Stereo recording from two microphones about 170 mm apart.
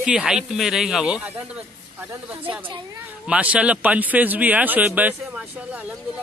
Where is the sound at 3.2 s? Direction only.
5° right (ahead or behind).